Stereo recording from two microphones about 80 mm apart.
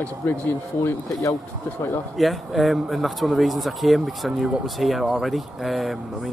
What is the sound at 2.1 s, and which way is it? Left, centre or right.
Speech, centre.